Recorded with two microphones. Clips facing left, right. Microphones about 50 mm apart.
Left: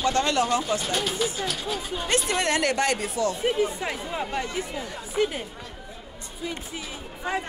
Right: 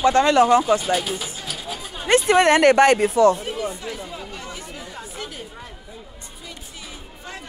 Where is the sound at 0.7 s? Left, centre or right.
Centre.